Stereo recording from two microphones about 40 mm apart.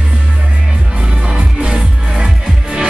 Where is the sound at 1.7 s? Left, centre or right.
Right.